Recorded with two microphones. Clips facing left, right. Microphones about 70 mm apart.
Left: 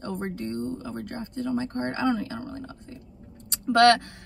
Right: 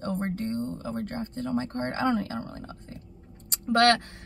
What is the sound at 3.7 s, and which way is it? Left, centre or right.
Speech, right.